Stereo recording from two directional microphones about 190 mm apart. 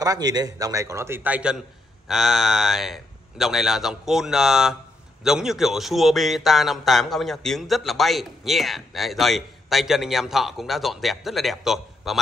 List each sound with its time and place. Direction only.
0.0 s a man's voice: 20° right (ahead or behind); by 12.2 s centre (ahead or behind)